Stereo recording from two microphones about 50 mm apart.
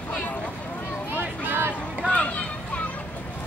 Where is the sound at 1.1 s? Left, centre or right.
Right.